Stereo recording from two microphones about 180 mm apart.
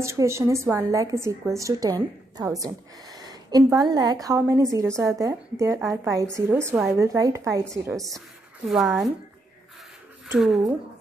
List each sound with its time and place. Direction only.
0.0 s a woman's voice: 15° right (ahead or behind)
8.6 s speech: centre (ahead or behind)